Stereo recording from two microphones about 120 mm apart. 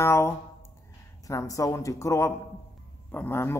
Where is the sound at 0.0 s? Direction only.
20° left (ahead or behind).